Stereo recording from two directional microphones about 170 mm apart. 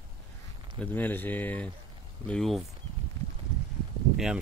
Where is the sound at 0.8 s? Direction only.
10° left (ahead or behind).